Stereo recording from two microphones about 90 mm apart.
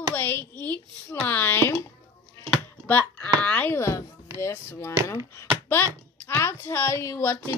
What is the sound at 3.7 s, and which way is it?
Speech, 30° left (ahead or behind).